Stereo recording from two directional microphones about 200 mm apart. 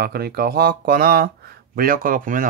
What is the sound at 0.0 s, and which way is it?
Speech, 50° right (ahead or behind).